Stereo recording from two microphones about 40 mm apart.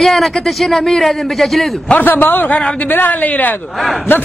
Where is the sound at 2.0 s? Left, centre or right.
Left.